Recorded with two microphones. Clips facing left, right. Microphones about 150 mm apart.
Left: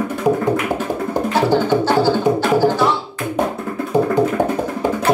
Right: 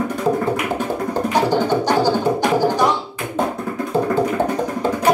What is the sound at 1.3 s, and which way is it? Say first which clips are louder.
Music: left 2 dB; 15° right (ahead or behind).